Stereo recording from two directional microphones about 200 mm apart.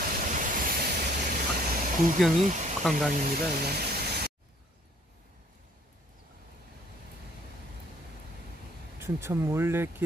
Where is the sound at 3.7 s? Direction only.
55° right (ahead or behind).